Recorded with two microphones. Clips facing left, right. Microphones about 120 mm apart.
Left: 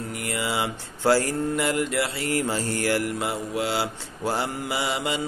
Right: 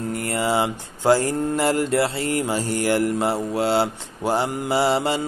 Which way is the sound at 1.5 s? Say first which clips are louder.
Right 6 dB; 35° right (ahead or behind).